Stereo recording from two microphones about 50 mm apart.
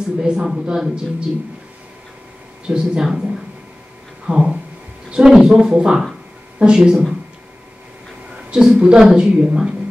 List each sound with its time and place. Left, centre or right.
0.0 s speech: centre
2.6 s speech: centre
4.3 s speech: centre
8.5 s speech: centre